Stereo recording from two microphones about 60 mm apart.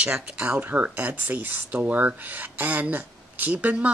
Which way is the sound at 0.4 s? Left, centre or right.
Right.